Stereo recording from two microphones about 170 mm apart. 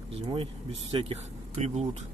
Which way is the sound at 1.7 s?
40° right (ahead or behind).